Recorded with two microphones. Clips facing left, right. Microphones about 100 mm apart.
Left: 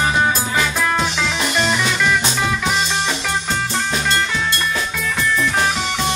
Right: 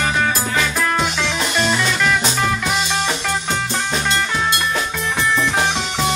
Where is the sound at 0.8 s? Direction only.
Centre (ahead or behind).